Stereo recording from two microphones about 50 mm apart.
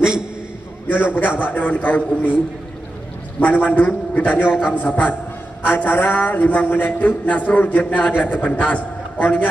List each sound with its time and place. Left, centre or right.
0.8 s speech: left
3.3 s speech: left
8.1 s speech: left
8.5 s a man's voice: left